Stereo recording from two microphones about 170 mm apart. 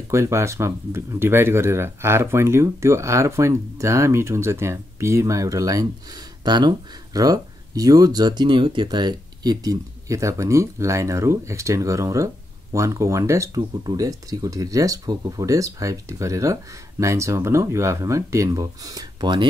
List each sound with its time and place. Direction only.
0.1 s speech: 15° right (ahead or behind)